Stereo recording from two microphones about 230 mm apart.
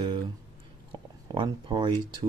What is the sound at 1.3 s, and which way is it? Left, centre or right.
Speech, centre.